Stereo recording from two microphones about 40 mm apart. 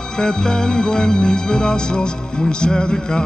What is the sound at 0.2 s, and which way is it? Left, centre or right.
Music, centre.